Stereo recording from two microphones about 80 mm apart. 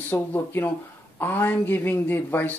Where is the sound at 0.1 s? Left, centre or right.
Left.